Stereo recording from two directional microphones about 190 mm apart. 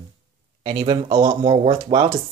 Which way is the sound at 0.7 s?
25° right (ahead or behind).